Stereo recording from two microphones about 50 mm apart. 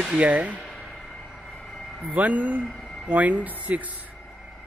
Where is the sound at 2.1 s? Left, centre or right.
Right.